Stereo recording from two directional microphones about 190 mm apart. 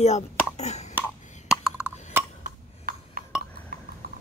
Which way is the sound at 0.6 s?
35° left (ahead or behind).